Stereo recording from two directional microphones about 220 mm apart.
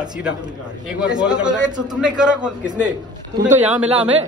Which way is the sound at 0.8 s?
5° right (ahead or behind).